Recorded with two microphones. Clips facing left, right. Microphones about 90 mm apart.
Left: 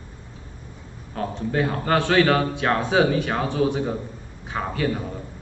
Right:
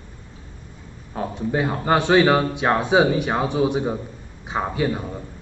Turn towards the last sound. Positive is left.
turn(degrees=-15)  # may be behind; listen again after turning